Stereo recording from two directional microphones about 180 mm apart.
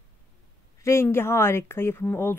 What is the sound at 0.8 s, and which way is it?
Speech, 15° left (ahead or behind).